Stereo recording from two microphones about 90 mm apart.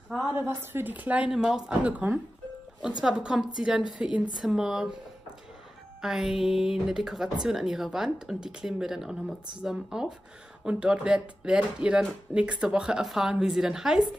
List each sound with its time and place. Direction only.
0.3 s a woman's voice: 25° right (ahead or behind)
1.3 s speech: 5° right (ahead or behind)
1.7 s a woman's voice: 15° right (ahead or behind)
5.9 s a woman's voice: 5° right (ahead or behind)